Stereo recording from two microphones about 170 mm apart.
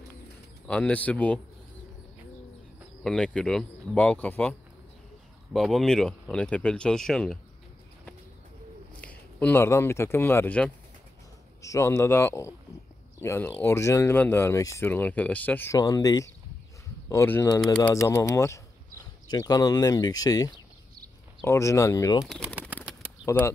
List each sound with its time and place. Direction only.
0.7 s speech: 5° left (ahead or behind)
3.0 s speech: 5° left (ahead or behind)
9.0 s speech: 10° left (ahead or behind)
23.2 s speech: 15° left (ahead or behind)